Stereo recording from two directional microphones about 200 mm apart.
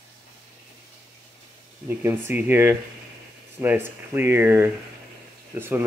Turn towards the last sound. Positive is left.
turn(degrees=-10)  # may be behind; listen again after turning